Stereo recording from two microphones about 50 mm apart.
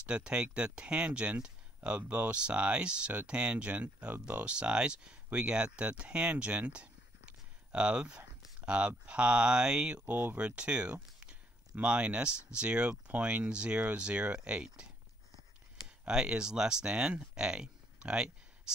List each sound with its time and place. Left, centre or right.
0.0 s speech: centre
6.3 s a sound: right
8.5 s speech: right
10.0 s speech: right
16.1 s speech: centre